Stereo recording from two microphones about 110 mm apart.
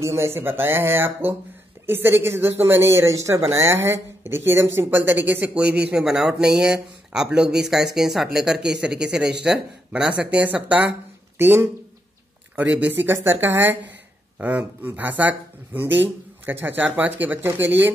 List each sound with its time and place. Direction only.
0.0 s speech: 25° right (ahead or behind)